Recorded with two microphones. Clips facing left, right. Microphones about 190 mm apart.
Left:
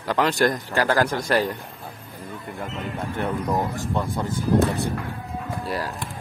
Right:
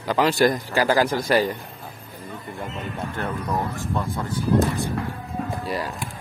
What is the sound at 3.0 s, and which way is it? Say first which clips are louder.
Speech: left 3 dB; 10° left (ahead or behind).